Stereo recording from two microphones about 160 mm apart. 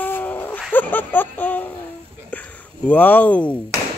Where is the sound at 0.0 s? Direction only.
10° left (ahead or behind).